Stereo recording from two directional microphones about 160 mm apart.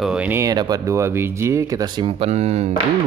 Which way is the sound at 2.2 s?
40° right (ahead or behind).